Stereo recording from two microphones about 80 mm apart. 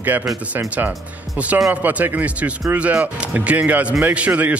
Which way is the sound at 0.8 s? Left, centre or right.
Right.